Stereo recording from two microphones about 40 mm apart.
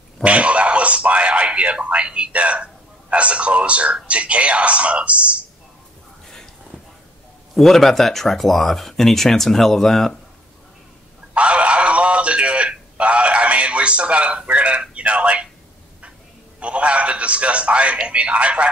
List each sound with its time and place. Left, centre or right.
0.2 s speech: right
7.5 s speech: centre
11.3 s a sound: right
16.5 s speech: right